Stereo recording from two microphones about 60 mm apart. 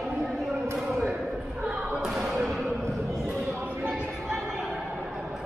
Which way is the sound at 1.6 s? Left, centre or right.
Centre.